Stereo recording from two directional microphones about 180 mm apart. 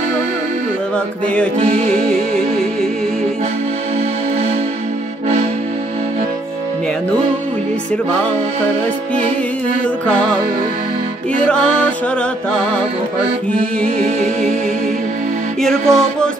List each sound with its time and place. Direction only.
0.9 s music: 5° left (ahead or behind)
1.6 s music: 30° right (ahead or behind)
2.0 s music: 5° left (ahead or behind)
11.4 s music: 5° left (ahead or behind)
13.9 s music: 35° right (ahead or behind)
15.6 s music: 5° left (ahead or behind)